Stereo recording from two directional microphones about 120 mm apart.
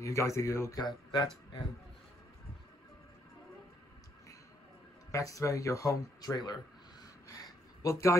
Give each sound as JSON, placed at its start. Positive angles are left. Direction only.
{"t": 0.0, "sound": "speech", "side_deg": 25}
{"t": 5.1, "sound": "speech", "side_deg": 25}
{"t": 7.4, "sound": "a sound", "side_deg": 25}